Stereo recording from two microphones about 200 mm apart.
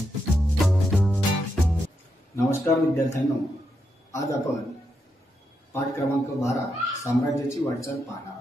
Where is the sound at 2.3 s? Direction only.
15° left (ahead or behind).